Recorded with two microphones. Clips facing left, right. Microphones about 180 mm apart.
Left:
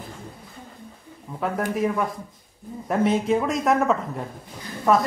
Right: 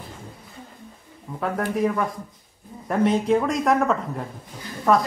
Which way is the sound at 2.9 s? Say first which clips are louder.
Right 1 dB; centre (ahead or behind).